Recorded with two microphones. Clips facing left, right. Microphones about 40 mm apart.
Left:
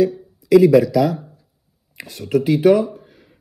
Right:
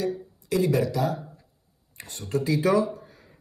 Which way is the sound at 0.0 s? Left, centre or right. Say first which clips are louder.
Left 11 dB; left.